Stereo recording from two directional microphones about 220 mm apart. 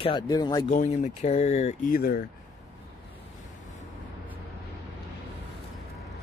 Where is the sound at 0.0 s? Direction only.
20° left (ahead or behind).